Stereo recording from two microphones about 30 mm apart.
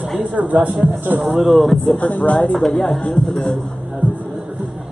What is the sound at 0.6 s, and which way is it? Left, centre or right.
Speech, right.